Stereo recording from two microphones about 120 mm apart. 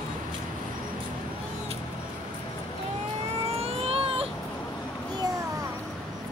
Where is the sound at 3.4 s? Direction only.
55° right (ahead or behind).